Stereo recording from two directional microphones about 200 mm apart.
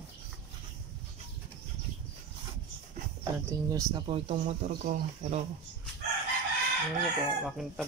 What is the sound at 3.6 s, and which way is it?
Speech, 15° right (ahead or behind).